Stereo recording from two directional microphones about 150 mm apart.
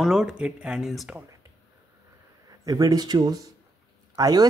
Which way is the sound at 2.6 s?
25° right (ahead or behind).